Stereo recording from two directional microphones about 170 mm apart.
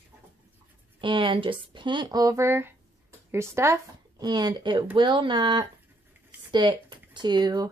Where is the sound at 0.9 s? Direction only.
30° right (ahead or behind).